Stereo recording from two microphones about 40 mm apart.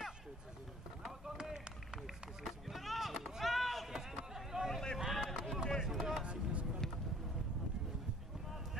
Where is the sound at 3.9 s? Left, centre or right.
Centre.